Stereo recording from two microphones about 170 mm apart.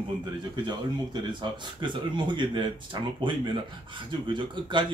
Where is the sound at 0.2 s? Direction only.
25° right (ahead or behind).